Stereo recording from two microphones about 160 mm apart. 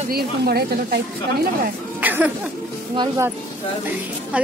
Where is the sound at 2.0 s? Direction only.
10° right (ahead or behind).